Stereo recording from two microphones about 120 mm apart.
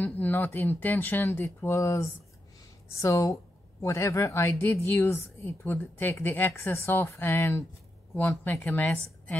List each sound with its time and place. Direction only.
0.0 s speech: 15° left (ahead or behind)